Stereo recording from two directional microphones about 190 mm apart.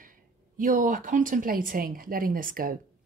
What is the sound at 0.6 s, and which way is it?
A woman's voice, 45° right (ahead or behind).